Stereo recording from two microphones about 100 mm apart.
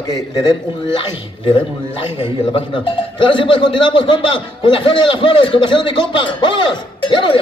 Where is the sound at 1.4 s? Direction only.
55° left (ahead or behind).